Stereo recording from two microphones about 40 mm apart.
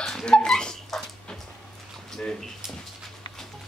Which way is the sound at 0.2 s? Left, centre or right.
Left.